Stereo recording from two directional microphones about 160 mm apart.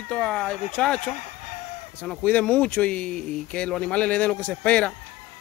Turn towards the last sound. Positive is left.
turn(degrees=10)  # may be behind; listen again after turning